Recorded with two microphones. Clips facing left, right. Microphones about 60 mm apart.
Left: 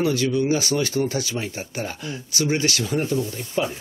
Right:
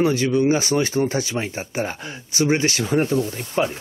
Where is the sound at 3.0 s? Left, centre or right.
Right.